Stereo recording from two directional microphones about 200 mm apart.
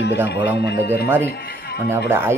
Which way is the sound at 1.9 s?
10° right (ahead or behind).